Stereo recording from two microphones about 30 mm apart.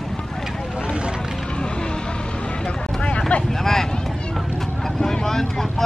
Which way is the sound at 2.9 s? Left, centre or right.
Left.